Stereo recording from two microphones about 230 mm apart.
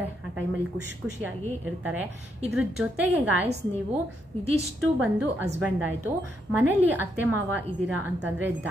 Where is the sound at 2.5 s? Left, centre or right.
Centre.